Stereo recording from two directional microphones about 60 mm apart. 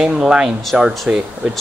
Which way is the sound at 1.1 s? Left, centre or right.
Right.